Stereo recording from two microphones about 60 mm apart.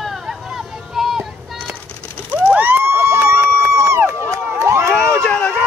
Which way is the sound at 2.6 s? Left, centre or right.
Right.